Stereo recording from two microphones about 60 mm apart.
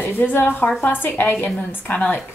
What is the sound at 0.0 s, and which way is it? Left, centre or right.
A woman's voice, left.